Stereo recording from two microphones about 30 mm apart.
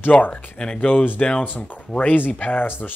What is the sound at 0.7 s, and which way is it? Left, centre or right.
Speech, left.